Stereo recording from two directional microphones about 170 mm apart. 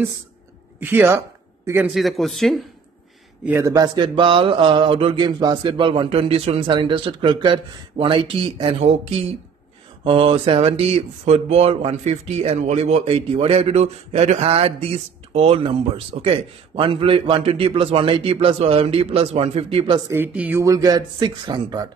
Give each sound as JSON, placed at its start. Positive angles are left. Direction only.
{"t": 0.7, "sound": "a woman's voice", "side_deg": -10}
{"t": 1.9, "sound": "a man's voice", "side_deg": 0}
{"t": 3.4, "sound": "speech", "side_deg": -15}
{"t": 20.1, "sound": "speech", "side_deg": -10}